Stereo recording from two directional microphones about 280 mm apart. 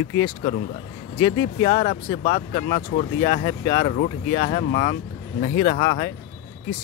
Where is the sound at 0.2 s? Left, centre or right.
Centre.